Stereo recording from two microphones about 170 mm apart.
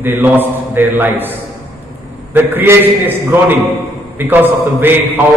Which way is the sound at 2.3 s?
10° right (ahead or behind).